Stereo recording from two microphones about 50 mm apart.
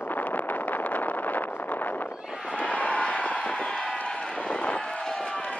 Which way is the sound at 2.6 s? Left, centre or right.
Left.